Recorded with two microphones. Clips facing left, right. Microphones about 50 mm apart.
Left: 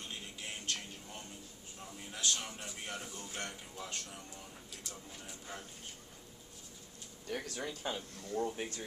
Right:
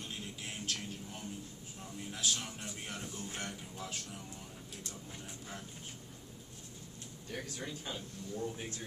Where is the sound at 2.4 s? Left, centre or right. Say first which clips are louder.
Even; centre.